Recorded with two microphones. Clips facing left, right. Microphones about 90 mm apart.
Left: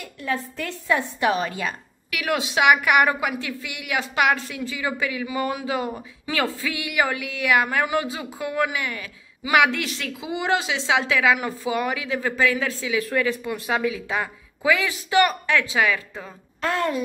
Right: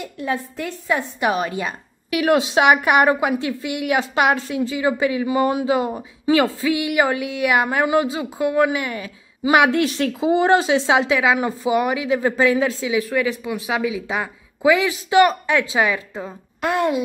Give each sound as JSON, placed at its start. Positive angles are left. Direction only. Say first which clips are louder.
{"t": 0.0, "sound": "a woman's voice", "louder": "right 3 dB", "side_deg": -20}
{"t": 2.1, "sound": "a woman's voice", "louder": "right 7 dB", "side_deg": -30}
{"t": 10.9, "sound": "a woman's voice", "louder": "even", "side_deg": -25}